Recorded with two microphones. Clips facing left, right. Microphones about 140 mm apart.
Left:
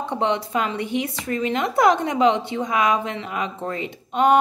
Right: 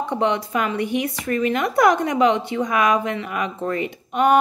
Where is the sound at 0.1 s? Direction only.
20° left (ahead or behind).